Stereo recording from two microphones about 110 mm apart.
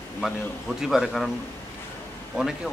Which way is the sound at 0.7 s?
5° right (ahead or behind).